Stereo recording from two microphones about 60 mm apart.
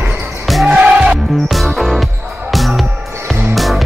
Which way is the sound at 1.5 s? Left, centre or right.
Centre.